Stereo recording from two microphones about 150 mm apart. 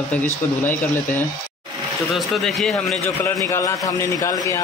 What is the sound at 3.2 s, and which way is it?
A man's voice, 20° left (ahead or behind).